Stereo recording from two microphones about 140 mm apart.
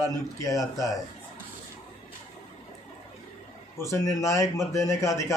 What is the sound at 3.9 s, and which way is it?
Speech, 20° left (ahead or behind).